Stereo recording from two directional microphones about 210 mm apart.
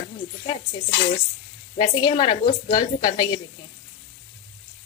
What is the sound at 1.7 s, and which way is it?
A woman's voice, 20° left (ahead or behind).